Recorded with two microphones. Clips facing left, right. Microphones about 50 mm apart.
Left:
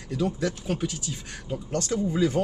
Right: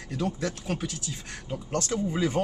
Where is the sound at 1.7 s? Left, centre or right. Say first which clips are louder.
Left 1 dB; right.